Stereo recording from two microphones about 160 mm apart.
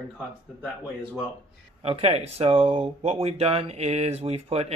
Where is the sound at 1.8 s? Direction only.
35° right (ahead or behind).